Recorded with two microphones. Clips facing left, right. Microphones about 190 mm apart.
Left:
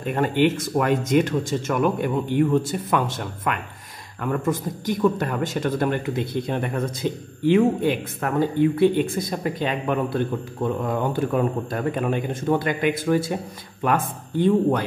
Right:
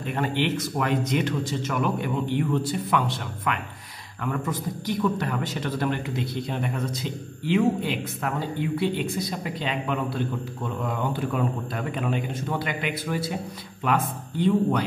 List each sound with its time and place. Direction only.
0.0 s a man's voice: 50° left (ahead or behind)